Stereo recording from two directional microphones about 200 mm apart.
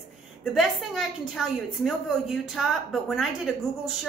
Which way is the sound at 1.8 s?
Centre (ahead or behind).